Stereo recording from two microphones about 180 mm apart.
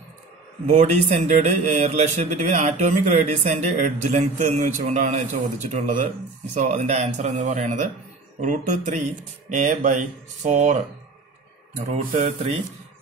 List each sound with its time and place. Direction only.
0.7 s speech: 40° right (ahead or behind)